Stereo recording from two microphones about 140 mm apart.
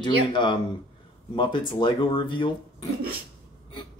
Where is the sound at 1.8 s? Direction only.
35° left (ahead or behind).